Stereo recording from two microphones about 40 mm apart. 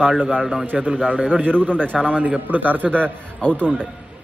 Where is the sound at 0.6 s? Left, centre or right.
Right.